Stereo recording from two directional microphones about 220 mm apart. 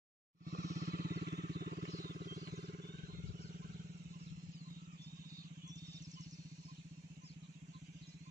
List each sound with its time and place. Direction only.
0.5 s vehicle: 40° right (ahead or behind)